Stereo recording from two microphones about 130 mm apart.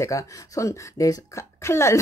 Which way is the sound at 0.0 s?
25° left (ahead or behind).